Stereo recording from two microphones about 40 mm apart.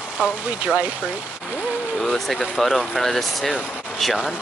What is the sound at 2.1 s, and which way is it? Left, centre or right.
A man's voice, centre.